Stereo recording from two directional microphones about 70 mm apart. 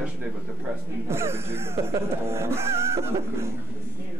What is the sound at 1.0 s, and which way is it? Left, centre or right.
Music, right.